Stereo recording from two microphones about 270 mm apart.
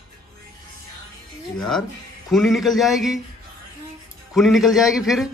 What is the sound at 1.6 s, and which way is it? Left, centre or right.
A man's voice, centre.